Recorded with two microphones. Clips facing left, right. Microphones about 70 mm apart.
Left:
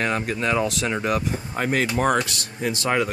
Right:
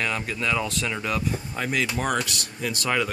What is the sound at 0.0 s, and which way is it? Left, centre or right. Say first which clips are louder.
Speech: left 4 dB; left.